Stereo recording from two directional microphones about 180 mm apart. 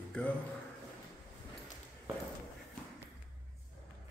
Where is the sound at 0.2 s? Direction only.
5° left (ahead or behind).